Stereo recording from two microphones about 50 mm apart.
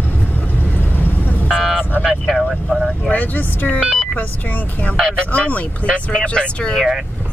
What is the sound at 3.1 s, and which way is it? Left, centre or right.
Speech, left.